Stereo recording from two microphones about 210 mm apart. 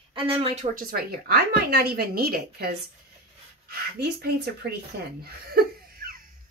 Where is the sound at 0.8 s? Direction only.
45° right (ahead or behind).